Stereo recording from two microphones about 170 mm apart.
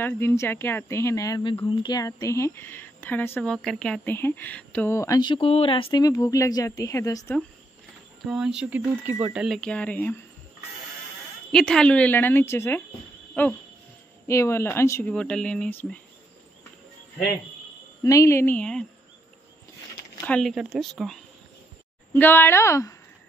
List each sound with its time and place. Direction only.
0.0 s speech: 15° left (ahead or behind)
8.2 s speech: 5° right (ahead or behind)
11.5 s speech: 5° left (ahead or behind)
13.3 s a sound: 10° left (ahead or behind)
14.2 s speech: 15° left (ahead or behind)
18.0 s speech: 20° left (ahead or behind)
20.2 s speech: 5° left (ahead or behind)
22.1 s speech: 10° left (ahead or behind)